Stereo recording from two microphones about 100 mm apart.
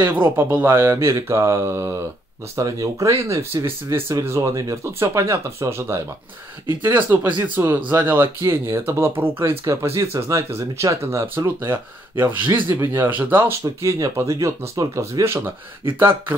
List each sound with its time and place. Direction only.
0.0 s speech: 20° right (ahead or behind)